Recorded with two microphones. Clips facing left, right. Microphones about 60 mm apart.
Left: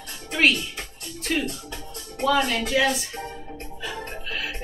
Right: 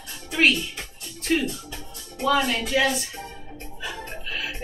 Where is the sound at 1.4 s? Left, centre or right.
Left.